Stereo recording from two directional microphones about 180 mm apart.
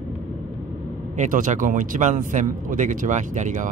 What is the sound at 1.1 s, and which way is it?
Speech, 45° right (ahead or behind).